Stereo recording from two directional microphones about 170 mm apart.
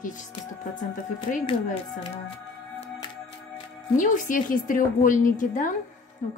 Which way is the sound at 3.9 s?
50° left (ahead or behind).